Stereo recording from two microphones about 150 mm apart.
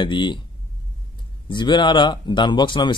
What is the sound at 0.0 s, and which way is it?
Speech, 30° left (ahead or behind).